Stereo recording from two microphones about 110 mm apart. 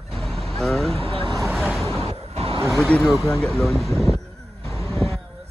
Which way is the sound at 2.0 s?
65° right (ahead or behind).